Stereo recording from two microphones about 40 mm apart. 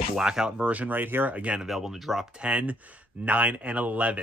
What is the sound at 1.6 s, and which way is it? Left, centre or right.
Speech, centre.